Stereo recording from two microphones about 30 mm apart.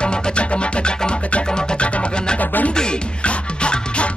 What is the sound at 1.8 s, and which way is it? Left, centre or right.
Music, left.